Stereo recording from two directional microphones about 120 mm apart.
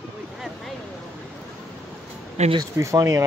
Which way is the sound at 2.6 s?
25° right (ahead or behind).